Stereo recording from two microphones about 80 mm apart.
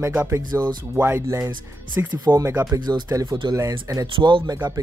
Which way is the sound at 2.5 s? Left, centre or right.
Right.